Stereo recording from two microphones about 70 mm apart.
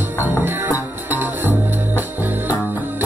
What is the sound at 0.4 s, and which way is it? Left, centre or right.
Music, right.